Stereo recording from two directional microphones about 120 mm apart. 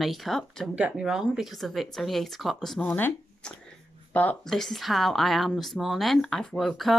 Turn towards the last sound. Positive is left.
turn(degrees=0)  # may be behind; listen again after turning